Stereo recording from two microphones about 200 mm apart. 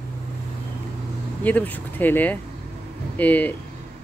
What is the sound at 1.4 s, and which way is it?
Speech, 10° left (ahead or behind).